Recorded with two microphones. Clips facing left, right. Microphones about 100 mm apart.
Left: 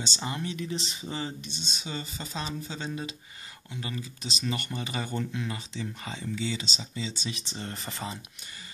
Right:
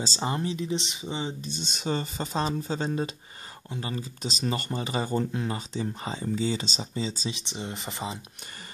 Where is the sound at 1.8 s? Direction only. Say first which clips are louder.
Right 9 dB; 45° right (ahead or behind).